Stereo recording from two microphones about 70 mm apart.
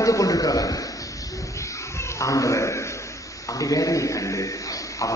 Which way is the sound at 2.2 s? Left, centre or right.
Left.